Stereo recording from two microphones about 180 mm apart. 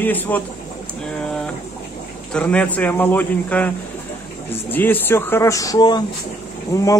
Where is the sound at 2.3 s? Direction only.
5° left (ahead or behind).